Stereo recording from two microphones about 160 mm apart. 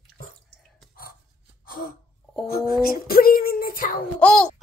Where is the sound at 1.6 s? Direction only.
60° left (ahead or behind).